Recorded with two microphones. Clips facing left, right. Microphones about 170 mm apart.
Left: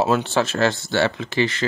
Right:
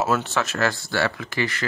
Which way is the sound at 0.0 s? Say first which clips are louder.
Left 4 dB; 30° left (ahead or behind).